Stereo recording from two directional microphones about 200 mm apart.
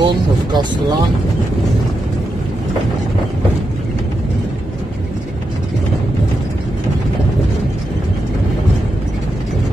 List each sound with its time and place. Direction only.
0.0 s speech: 20° right (ahead or behind)